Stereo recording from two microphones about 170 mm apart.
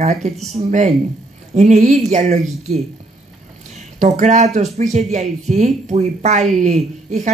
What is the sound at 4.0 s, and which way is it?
Speech, 45° right (ahead or behind).